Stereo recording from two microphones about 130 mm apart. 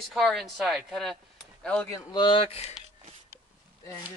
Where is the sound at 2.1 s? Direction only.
35° left (ahead or behind).